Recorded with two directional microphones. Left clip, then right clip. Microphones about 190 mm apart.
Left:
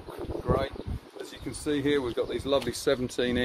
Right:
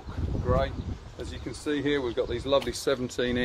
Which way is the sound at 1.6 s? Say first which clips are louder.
Left 1 dB; 55° left (ahead or behind).